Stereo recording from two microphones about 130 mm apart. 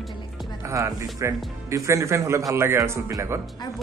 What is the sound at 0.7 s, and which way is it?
A man's voice, 25° right (ahead or behind).